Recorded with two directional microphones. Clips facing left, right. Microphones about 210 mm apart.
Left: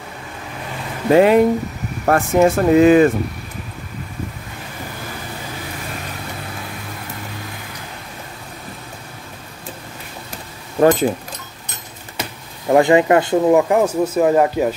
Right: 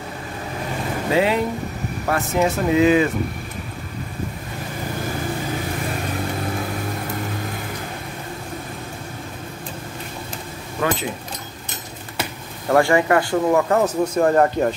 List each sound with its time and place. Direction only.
1.1 s speech: 50° left (ahead or behind)
10.8 s speech: 40° left (ahead or behind)
12.6 s speech: 20° left (ahead or behind)